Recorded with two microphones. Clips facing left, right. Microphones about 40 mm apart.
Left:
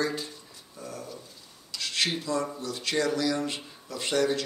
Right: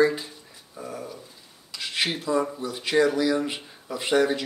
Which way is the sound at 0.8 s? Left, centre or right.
Centre.